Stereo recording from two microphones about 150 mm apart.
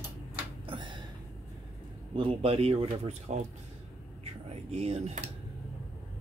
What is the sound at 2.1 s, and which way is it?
Speech, 40° right (ahead or behind).